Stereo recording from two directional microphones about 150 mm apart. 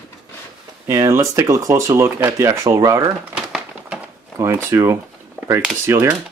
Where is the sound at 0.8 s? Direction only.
20° right (ahead or behind).